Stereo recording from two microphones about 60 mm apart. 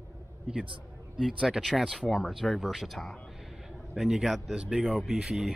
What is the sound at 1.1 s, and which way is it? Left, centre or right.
Speech, centre.